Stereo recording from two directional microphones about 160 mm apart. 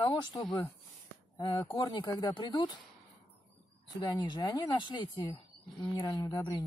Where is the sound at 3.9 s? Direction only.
25° left (ahead or behind).